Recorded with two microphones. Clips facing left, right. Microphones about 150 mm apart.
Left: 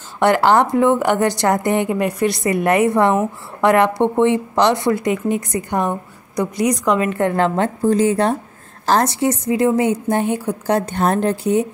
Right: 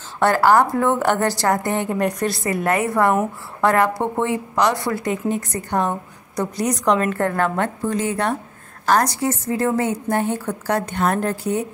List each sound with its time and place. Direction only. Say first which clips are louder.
0.2 s a woman's voice: left 2 dB; 20° left (ahead or behind)
2.6 s a woman's voice: left 4 dB; 20° left (ahead or behind)
10.9 s a woman's voice: left 3 dB; 30° left (ahead or behind)